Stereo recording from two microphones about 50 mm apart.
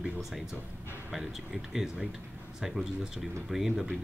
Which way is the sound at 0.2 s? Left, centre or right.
Centre.